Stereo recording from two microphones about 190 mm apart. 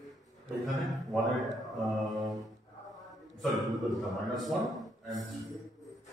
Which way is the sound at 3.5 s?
Centre (ahead or behind).